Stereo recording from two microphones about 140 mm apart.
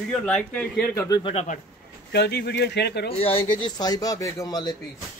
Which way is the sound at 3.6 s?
30° left (ahead or behind).